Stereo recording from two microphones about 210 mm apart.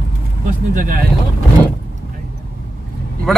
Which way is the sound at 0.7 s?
40° right (ahead or behind).